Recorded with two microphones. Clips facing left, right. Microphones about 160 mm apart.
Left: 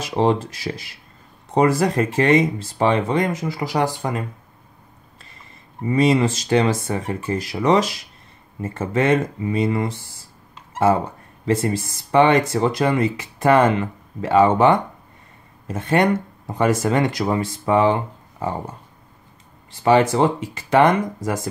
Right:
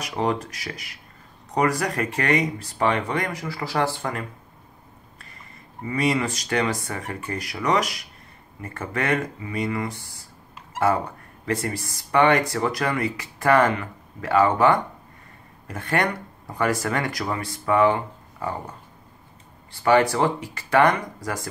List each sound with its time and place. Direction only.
0.0 s speech: 25° left (ahead or behind)
5.9 s speech: 25° left (ahead or behind)
19.7 s speech: 20° left (ahead or behind)